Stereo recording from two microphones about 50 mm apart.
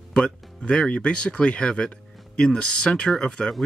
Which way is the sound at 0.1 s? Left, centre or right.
Left.